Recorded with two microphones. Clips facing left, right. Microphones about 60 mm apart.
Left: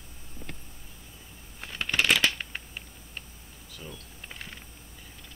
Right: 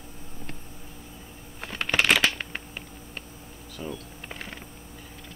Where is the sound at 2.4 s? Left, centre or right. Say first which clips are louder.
Right 3 dB; right.